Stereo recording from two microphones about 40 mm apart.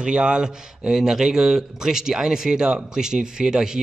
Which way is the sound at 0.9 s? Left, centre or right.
Centre.